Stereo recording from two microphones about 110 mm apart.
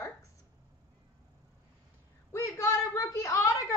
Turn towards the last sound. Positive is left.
turn(degrees=30)  # may be behind; listen again after turning